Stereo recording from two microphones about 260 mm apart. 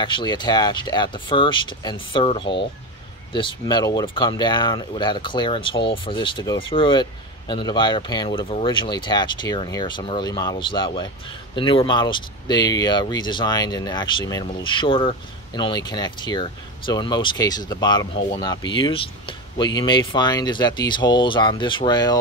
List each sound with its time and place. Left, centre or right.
0.0 s speech: centre